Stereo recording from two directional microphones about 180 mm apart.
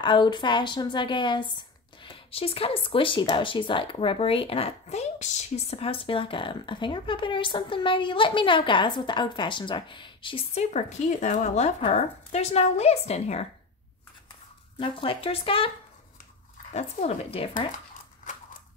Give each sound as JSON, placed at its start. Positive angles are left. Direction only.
{"t": 0.0, "sound": "speech", "side_deg": 25}
{"t": 14.8, "sound": "speech", "side_deg": 30}
{"t": 16.7, "sound": "a woman's voice", "side_deg": 35}